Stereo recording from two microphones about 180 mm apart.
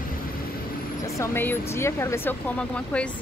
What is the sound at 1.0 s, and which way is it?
Speech, 15° left (ahead or behind).